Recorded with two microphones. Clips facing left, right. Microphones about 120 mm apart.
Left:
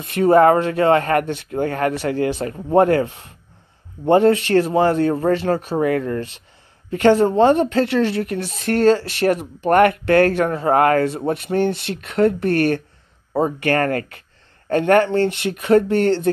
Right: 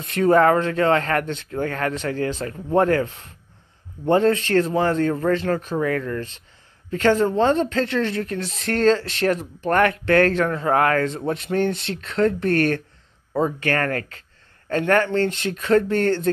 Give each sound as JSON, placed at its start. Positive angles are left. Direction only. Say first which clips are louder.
{"t": 0.2, "sound": "speech", "louder": "left 3 dB", "side_deg": 15}